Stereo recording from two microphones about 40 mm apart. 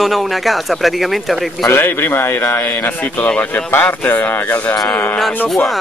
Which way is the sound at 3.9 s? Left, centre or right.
Left.